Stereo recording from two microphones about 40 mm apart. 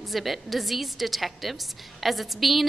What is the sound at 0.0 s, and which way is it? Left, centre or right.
A woman's voice, centre.